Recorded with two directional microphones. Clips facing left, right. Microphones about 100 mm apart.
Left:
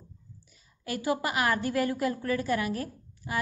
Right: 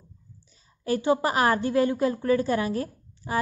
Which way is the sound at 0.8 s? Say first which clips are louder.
Right 6 dB; 30° right (ahead or behind).